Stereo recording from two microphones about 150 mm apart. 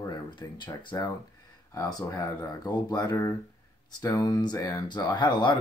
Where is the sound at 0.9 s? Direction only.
20° left (ahead or behind).